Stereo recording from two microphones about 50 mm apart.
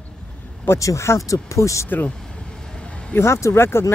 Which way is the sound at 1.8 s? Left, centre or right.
Left.